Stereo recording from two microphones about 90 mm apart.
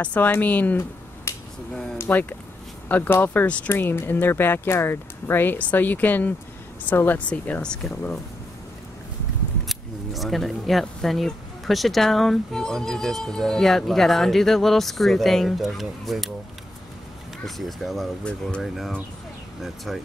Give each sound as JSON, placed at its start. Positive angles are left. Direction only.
{"t": 0.0, "sound": "speech", "side_deg": 15}
{"t": 1.3, "sound": "finger snapping", "side_deg": 30}
{"t": 2.0, "sound": "speech", "side_deg": 20}
{"t": 9.7, "sound": "speech", "side_deg": 0}
{"t": 17.5, "sound": "speech", "side_deg": 0}